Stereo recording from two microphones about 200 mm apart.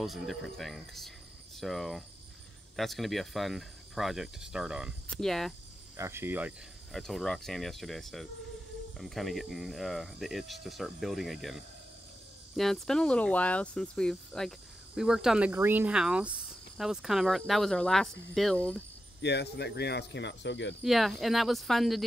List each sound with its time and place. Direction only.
0.0 s speech: centre (ahead or behind)
5.9 s speech: 10° right (ahead or behind); by 18.8 s 5° left (ahead or behind)
19.2 s speech: 55° left (ahead or behind)
20.8 s speech: centre (ahead or behind)